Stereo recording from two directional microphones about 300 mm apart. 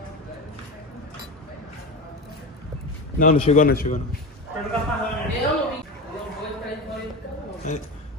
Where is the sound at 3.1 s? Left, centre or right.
Left.